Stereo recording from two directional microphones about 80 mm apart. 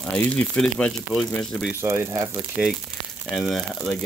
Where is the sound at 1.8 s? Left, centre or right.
Right.